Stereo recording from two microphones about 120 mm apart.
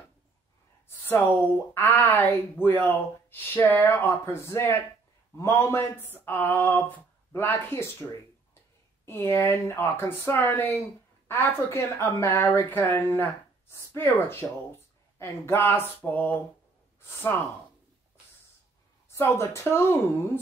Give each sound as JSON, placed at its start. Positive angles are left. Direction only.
{"t": 0.8, "sound": "speech", "side_deg": 15}
{"t": 19.0, "sound": "speech", "side_deg": 20}